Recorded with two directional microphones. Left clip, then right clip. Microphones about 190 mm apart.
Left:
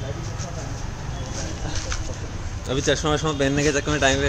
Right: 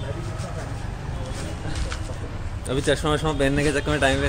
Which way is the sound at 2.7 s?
5° right (ahead or behind).